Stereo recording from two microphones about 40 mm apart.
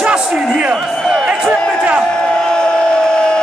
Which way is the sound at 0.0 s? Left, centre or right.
Right.